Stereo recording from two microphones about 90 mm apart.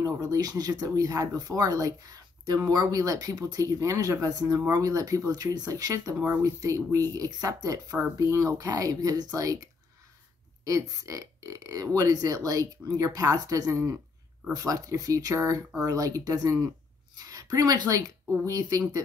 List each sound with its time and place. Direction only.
0.0 s speech: 40° right (ahead or behind)
6.1 s speech: 20° right (ahead or behind)
6.4 s a woman's voice: 40° right (ahead or behind)